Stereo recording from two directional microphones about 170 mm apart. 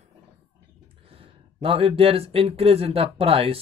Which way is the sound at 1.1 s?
35° right (ahead or behind).